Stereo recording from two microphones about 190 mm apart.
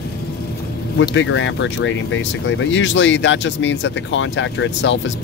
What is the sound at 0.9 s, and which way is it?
Speech, 80° left.